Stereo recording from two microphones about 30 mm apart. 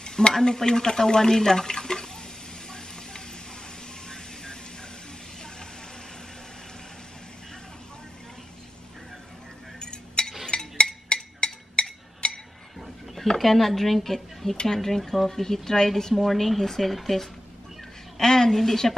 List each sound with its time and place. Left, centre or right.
0.0 s stir: left
0.3 s speech: centre
1.8 s water: left
9.8 s cutlery: left
10.5 s a sound: left
13.4 s speech: centre
18.1 s speech: centre